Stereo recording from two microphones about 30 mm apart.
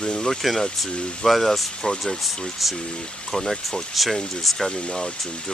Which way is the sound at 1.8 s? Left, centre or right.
Left.